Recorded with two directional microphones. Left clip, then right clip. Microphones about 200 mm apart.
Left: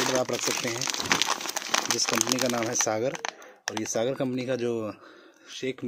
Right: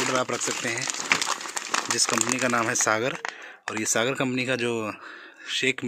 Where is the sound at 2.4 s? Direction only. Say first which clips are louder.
Right 3 dB; 5° right (ahead or behind).